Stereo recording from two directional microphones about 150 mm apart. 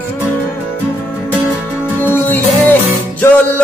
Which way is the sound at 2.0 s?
10° left (ahead or behind).